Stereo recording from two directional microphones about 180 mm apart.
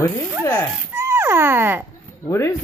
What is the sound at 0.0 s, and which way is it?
Speech, 20° left (ahead or behind).